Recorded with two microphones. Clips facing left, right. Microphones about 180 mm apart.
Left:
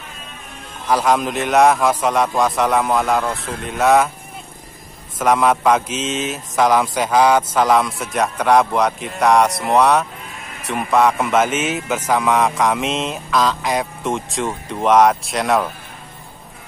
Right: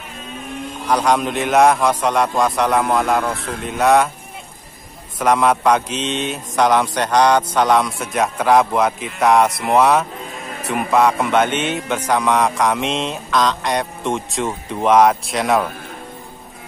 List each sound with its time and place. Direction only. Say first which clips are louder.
0.8 s a man's voice: even; 5° left (ahead or behind)
5.2 s a man's voice: even; centre (ahead or behind)